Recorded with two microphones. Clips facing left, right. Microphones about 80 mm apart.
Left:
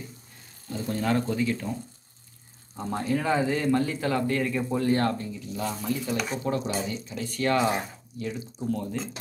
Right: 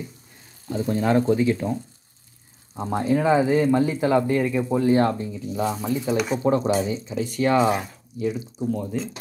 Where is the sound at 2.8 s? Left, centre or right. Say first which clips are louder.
Right 6 dB; centre.